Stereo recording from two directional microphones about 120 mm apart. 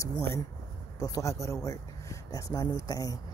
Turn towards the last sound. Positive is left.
turn(degrees=30)  # may be behind; listen again after turning